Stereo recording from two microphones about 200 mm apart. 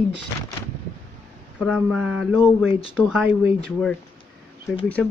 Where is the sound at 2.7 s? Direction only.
25° left (ahead or behind).